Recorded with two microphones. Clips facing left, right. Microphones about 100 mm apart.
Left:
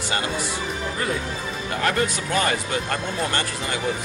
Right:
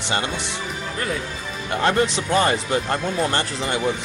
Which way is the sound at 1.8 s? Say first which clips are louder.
Right 4 dB; 25° right (ahead or behind).